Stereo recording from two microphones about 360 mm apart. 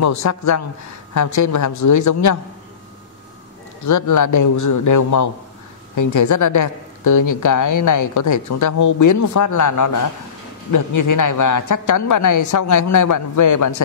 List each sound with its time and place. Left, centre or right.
0.0 s a woman's voice: left
3.8 s a woman's voice: left